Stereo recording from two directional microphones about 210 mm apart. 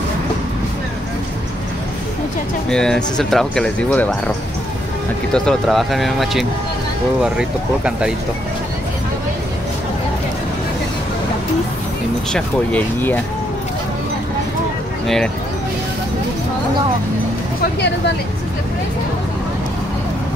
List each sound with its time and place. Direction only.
2.7 s speech: 5° left (ahead or behind)
5.3 s speech: 5° left (ahead or behind)
12.3 s speech: 5° left (ahead or behind)
17.6 s speech: 55° left (ahead or behind)